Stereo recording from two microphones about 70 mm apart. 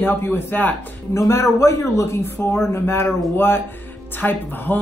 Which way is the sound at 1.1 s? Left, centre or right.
Left.